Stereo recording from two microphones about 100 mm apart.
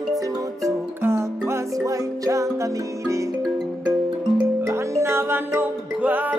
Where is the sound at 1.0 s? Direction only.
25° right (ahead or behind).